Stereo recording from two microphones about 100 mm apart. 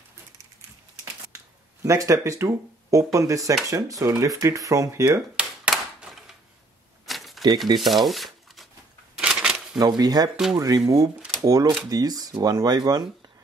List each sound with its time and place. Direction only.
1.8 s speech: 35° right (ahead or behind)
5.3 s a sound: 10° right (ahead or behind)
7.1 s typewriter: centre (ahead or behind)
7.4 s speech: 45° right (ahead or behind)
7.8 s speech: centre (ahead or behind)
9.1 s a sound: 5° right (ahead or behind)
9.8 s speech: 40° right (ahead or behind)